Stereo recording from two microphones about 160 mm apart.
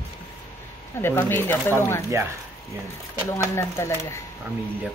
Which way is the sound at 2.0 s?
15° right (ahead or behind).